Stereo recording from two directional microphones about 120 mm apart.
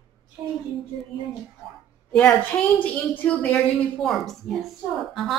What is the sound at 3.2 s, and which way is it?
A woman's voice, 5° left (ahead or behind).